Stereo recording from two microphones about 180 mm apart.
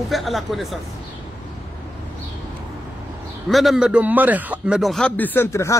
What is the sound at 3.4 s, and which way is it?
A man's voice, centre (ahead or behind).